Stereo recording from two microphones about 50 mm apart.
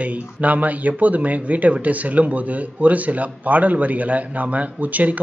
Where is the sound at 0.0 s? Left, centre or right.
Right.